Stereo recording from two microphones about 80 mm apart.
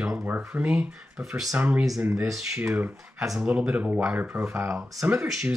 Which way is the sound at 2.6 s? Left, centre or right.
Right.